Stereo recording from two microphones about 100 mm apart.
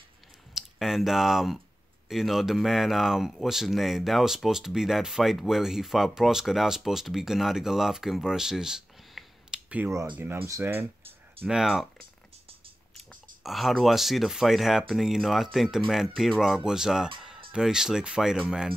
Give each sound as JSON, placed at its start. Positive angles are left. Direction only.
{"t": 0.6, "sound": "speech", "side_deg": -5}
{"t": 10.1, "sound": "speech", "side_deg": -20}
{"t": 11.4, "sound": "speech", "side_deg": -5}
{"t": 13.4, "sound": "speech", "side_deg": 0}